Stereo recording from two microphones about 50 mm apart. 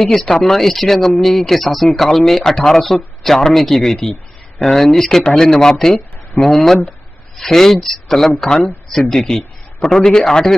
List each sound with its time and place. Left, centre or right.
0.0 s speech: centre